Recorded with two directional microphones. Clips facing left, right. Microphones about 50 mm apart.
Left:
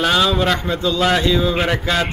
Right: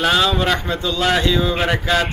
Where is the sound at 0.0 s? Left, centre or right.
Centre.